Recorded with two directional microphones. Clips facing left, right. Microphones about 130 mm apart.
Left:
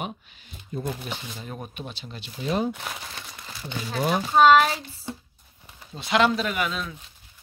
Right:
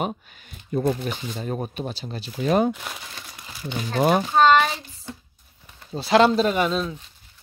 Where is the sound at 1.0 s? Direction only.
45° right (ahead or behind).